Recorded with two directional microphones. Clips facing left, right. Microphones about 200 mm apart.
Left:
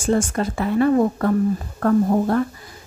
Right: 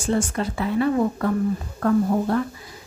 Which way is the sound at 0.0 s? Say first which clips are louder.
Left 3 dB; 45° left (ahead or behind).